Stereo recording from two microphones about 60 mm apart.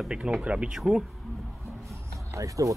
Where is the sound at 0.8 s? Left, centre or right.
Centre.